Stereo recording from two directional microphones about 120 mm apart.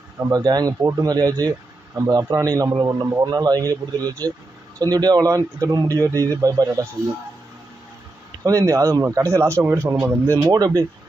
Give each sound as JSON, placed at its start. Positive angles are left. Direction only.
{"t": 0.3, "sound": "a man's voice", "side_deg": -35}
{"t": 8.5, "sound": "a man's voice", "side_deg": -25}